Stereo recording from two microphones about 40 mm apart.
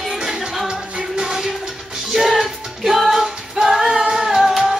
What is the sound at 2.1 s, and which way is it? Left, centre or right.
Music, centre.